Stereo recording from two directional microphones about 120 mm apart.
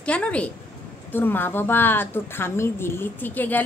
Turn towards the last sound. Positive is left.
turn(degrees=15)  # may be behind; listen again after turning